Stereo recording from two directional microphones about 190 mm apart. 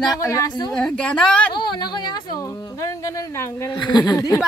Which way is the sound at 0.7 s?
5° left (ahead or behind).